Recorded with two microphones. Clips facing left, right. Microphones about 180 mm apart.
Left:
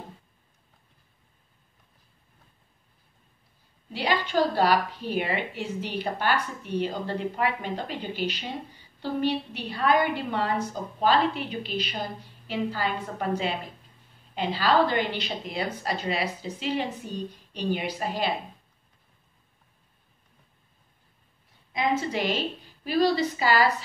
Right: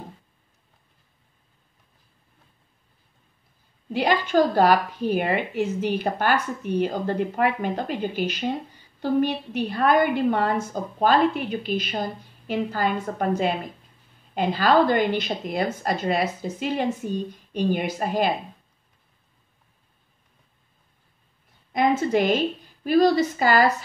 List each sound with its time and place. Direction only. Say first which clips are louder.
3.9 s a woman's voice: right 5 dB; 45° right (ahead or behind)
21.7 s a woman's voice: right 6 dB; 50° right (ahead or behind)